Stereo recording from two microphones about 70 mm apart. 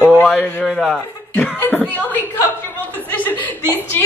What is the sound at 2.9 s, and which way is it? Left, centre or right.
Chuckle, left.